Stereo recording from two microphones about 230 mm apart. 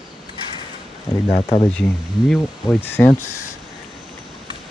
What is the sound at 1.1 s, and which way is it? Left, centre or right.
Speech, left.